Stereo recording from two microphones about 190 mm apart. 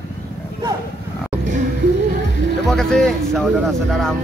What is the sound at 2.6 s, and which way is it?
A man's voice, 5° left (ahead or behind).